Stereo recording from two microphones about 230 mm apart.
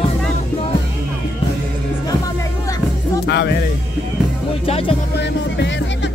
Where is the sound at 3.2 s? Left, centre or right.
Left.